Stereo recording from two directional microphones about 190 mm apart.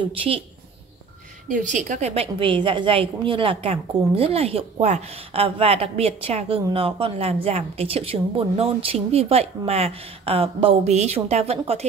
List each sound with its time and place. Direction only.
0.0 s a woman's voice: 30° right (ahead or behind)
1.5 s a woman's voice: 40° right (ahead or behind)